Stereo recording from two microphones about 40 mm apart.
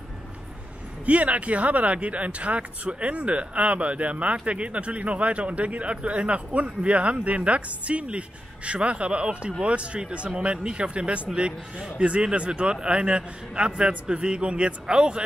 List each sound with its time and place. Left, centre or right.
1.0 s a man's voice: right